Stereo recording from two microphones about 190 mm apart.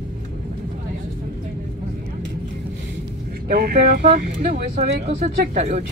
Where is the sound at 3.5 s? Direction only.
50° right (ahead or behind).